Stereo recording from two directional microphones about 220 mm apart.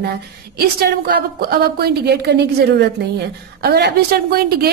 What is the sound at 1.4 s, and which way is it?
A woman's voice, 45° right (ahead or behind).